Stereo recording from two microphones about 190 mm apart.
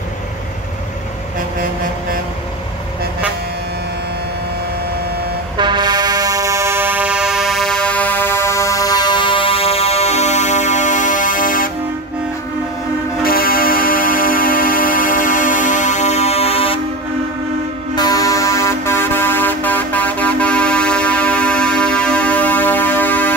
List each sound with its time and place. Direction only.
5.6 s music: 25° right (ahead or behind); by 11.7 s 45° left (ahead or behind)
13.2 s music: 50° left (ahead or behind); by 16.8 s 30° left (ahead or behind)
17.9 s a sound: 20° left (ahead or behind)